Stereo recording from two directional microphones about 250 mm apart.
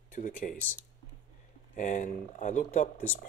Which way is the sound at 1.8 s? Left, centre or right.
Left.